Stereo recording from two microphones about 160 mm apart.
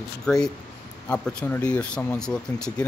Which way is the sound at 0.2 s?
5° left (ahead or behind).